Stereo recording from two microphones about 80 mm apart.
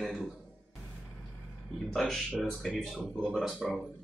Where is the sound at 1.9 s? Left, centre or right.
Centre.